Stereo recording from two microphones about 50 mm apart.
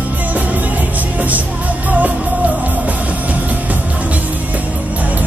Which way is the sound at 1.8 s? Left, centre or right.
Right.